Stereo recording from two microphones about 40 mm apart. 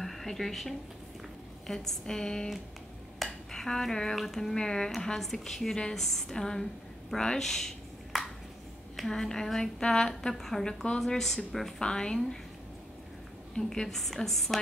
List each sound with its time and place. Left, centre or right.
0.0 s a woman's voice: centre
3.2 s a sound: centre
3.5 s a woman's voice: centre
7.3 s a sound: centre
9.1 s a woman's voice: centre
11.8 s a woman's voice: centre
13.6 s a woman's voice: centre